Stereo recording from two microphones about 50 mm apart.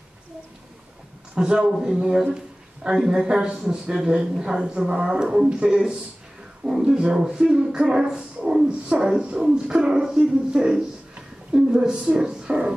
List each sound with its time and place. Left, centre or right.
1.3 s speech: centre
2.3 s a sound: centre
3.0 s speech: centre